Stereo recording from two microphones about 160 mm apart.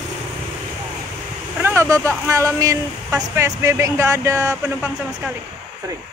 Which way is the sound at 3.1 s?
15° right (ahead or behind).